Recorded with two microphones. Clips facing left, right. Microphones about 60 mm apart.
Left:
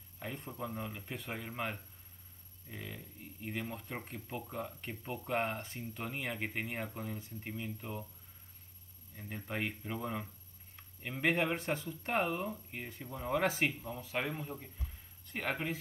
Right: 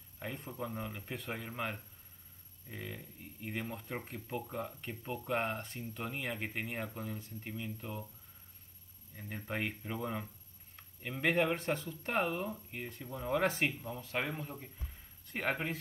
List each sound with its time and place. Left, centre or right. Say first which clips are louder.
0.2 s speech: right 1 dB; centre
5.0 s speech: even; centre
9.1 s speech: right 1 dB; centre